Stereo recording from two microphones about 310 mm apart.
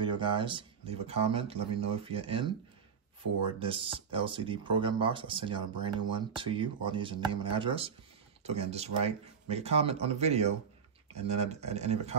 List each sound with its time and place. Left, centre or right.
0.0 s speech: centre
3.5 s speech: centre